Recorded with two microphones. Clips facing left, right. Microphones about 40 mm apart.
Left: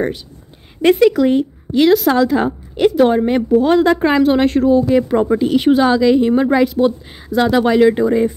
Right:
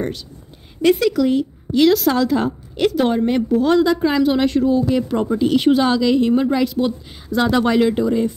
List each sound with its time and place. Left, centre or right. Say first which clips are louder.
0.8 s speech: left 4 dB; left
1.8 s speech: left 3 dB; centre; by 4.8 s left
4.8 s speech: left 5 dB; centre
7.2 s speech: left 3 dB; centre
8.0 s speech: left 4 dB; centre